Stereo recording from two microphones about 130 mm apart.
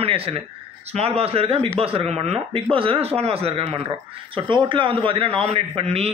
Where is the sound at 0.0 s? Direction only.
45° right (ahead or behind).